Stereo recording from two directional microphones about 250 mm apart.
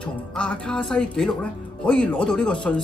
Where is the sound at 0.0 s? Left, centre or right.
Centre.